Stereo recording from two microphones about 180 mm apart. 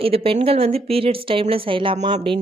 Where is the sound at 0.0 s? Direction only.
30° right (ahead or behind).